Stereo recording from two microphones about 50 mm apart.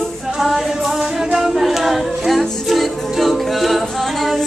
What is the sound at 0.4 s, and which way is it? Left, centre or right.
A capella, centre.